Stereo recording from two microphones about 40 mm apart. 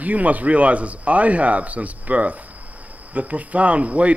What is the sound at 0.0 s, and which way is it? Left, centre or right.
Speech, right.